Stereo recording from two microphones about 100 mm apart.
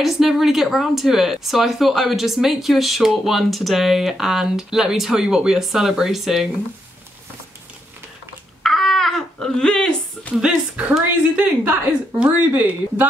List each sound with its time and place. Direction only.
0.0 s speech: centre (ahead or behind)
8.6 s a sound: 5° left (ahead or behind)
10.3 s a woman's voice: 10° right (ahead or behind)